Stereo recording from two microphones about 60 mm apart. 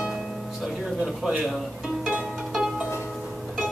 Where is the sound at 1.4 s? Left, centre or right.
Centre.